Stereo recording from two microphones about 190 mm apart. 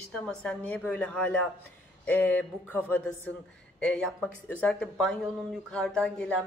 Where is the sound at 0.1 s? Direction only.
5° left (ahead or behind).